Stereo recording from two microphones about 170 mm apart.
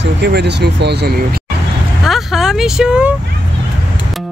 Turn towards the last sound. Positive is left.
turn(degrees=-5)  # may be behind; listen again after turning